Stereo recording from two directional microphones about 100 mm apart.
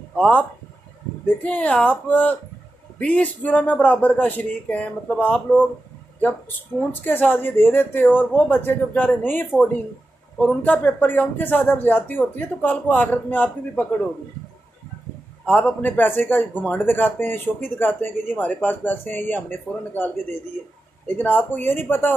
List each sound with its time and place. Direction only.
0.1 s speech: 10° left (ahead or behind)
6.9 s speech: 20° left (ahead or behind)
15.4 s speech: 15° left (ahead or behind)
21.2 s speech: 20° left (ahead or behind)